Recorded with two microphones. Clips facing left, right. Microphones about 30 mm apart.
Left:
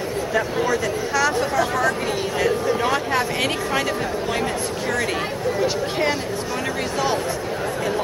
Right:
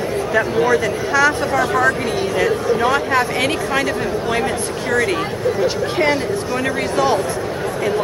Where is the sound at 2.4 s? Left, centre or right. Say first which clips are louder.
Right 2 dB; centre.